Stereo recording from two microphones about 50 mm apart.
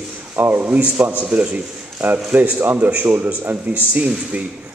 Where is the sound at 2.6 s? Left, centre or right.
Right.